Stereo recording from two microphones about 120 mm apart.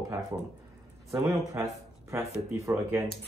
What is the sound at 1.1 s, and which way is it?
Speech, 25° right (ahead or behind).